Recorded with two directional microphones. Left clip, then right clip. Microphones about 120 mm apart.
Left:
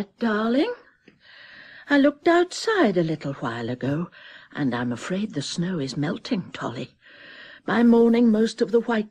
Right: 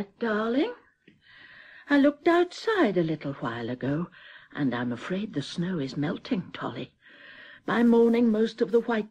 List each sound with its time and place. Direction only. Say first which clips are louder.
0.0 s speech: left 3 dB; 30° right (ahead or behind)
1.9 s speech: left 3 dB; 35° right (ahead or behind)